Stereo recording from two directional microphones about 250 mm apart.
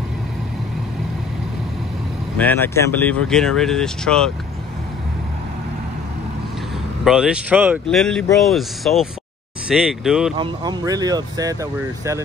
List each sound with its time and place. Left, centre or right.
2.3 s speech: centre
7.1 s speech: centre
10.3 s speech: centre